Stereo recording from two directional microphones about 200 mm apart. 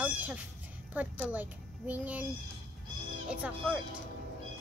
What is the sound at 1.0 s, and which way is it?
A child's voice, 10° right (ahead or behind).